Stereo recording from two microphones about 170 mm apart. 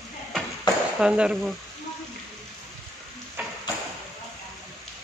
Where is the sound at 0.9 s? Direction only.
5° right (ahead or behind).